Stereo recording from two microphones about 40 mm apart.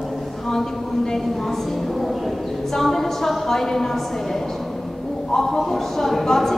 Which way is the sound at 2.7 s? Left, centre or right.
Centre.